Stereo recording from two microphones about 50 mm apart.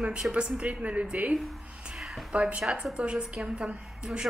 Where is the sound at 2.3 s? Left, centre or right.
Right.